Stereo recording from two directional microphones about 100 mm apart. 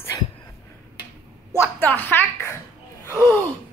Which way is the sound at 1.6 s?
20° left (ahead or behind).